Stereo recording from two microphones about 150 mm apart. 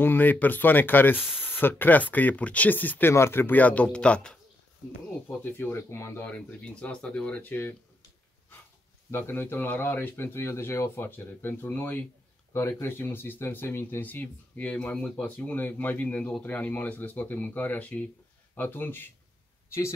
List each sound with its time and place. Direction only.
0.0 s speech: 15° left (ahead or behind)
9.1 s speech: 15° left (ahead or behind)